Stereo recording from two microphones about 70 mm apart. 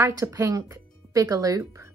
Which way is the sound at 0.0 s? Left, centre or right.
Right.